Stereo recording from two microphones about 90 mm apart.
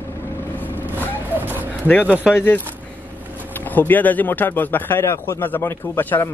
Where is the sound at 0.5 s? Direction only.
20° left (ahead or behind).